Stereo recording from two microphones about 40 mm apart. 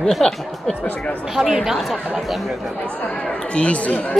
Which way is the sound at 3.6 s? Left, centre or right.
Left.